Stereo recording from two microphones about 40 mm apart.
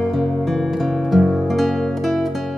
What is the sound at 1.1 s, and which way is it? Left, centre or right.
Music, centre.